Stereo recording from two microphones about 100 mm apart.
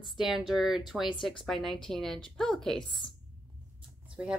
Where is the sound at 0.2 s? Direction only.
5° right (ahead or behind).